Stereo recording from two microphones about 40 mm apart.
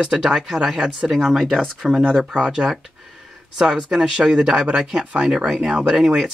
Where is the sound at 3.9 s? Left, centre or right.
Centre.